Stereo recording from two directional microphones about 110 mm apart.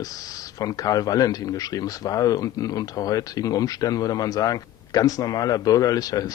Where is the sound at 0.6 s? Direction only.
35° left (ahead or behind).